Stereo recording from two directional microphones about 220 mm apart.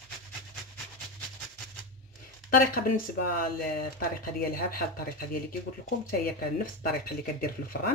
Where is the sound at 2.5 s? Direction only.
40° left (ahead or behind).